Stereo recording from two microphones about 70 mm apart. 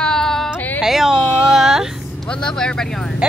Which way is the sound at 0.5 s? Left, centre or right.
Left.